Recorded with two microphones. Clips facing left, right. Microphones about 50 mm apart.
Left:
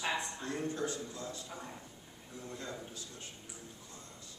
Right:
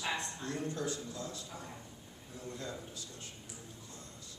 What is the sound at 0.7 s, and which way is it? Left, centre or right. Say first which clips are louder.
A man's voice: left 1 dB; left.